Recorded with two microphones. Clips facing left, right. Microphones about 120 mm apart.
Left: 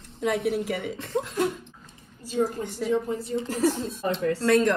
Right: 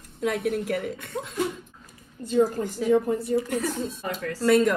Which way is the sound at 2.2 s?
55° right (ahead or behind).